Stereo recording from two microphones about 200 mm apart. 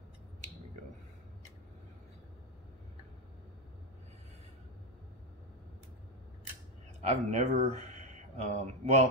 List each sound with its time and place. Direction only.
7.0 s speech: 35° right (ahead or behind)